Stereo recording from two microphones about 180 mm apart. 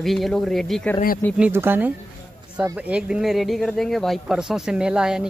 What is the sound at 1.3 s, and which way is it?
Speech, 10° right (ahead or behind).